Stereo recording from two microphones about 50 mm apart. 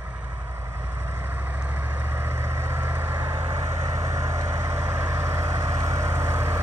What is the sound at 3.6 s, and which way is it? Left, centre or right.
Vehicle, right.